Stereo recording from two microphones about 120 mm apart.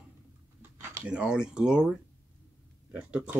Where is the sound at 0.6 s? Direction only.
20° right (ahead or behind).